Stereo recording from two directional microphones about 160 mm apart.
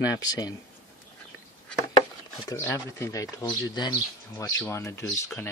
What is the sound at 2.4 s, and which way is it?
Speech, 20° left (ahead or behind).